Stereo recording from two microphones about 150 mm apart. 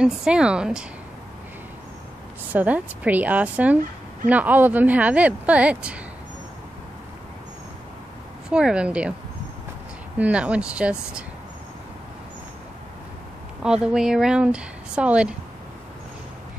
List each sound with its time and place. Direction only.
0.0 s speech: 5° right (ahead or behind)
2.5 s speech: 10° right (ahead or behind)
8.5 s speech: 5° right (ahead or behind)
10.1 s speech: 10° right (ahead or behind)
13.6 s speech: 5° right (ahead or behind)